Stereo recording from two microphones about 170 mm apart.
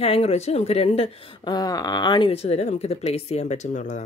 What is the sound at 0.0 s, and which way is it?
Speech, 35° left (ahead or behind).